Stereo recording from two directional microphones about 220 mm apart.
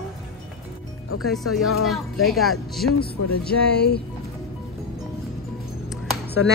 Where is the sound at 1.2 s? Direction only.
Centre (ahead or behind).